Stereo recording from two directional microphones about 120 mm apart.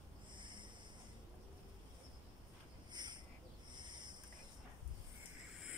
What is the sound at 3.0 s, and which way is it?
Cricket, 35° right (ahead or behind).